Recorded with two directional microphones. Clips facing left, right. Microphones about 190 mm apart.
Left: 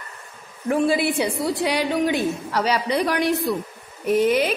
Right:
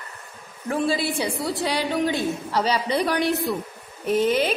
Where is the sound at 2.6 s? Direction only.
Centre (ahead or behind).